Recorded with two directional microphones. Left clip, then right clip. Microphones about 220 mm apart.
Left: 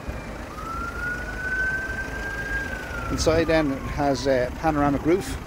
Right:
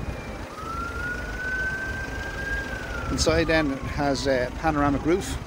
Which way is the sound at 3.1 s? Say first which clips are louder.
Left 1 dB; 20° left (ahead or behind).